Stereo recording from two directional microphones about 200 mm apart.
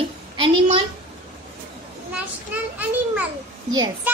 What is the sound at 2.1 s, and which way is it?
A child's voice, 10° right (ahead or behind).